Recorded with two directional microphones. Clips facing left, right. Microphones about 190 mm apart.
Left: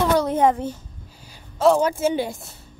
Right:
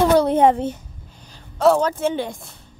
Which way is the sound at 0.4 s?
25° right (ahead or behind).